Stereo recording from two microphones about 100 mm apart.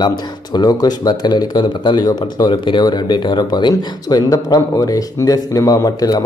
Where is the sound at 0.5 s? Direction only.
40° left (ahead or behind).